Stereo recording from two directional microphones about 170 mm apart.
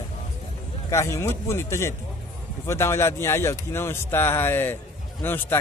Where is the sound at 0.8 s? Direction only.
15° left (ahead or behind).